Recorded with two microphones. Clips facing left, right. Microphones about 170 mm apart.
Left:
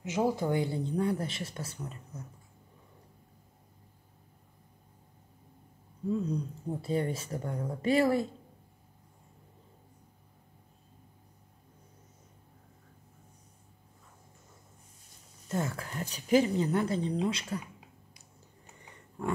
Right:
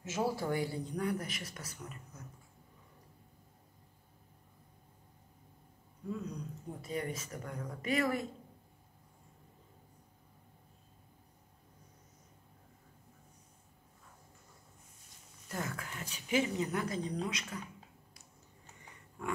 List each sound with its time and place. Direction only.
0.0 s speech: 15° left (ahead or behind)
6.1 s speech: 30° left (ahead or behind)
15.4 s speech: 25° left (ahead or behind)
18.8 s a sound: 35° left (ahead or behind)